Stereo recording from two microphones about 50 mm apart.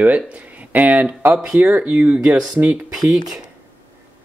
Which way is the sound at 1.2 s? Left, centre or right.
Right.